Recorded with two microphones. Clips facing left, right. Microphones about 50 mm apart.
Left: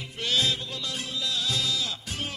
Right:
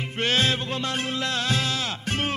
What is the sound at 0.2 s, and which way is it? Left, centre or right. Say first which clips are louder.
Music: right 4 dB; right.